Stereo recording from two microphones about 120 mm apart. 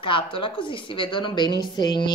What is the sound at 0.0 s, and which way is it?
A woman's voice, 45° left (ahead or behind).